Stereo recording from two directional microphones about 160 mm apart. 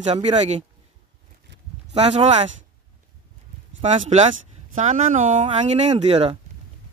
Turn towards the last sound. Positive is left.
turn(degrees=-35)  # may be behind; listen again after turning